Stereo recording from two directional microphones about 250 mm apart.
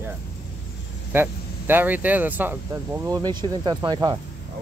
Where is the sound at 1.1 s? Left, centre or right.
Centre.